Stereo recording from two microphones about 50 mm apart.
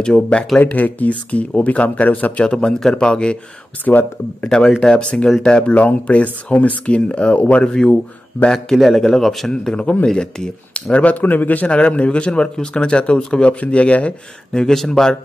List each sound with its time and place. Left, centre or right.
0.0 s speech: left
0.6 s speech: left
2.4 s a man's voice: centre
3.8 s speech: left
4.5 s a man's voice: centre
8.7 s speech: centre
9.5 s a man's voice: centre
14.5 s a man's voice: centre